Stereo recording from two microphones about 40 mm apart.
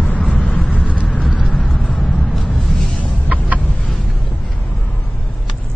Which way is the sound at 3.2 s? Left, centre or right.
Right.